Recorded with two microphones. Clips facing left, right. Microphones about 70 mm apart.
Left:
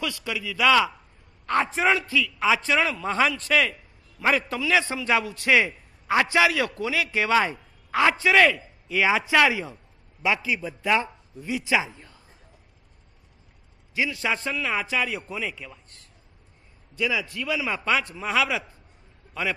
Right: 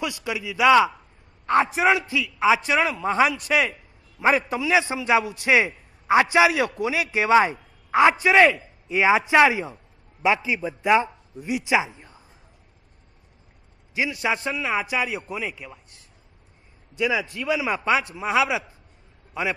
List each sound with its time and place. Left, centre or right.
0.0 s a man's voice: centre
13.9 s a man's voice: right
16.9 s a man's voice: right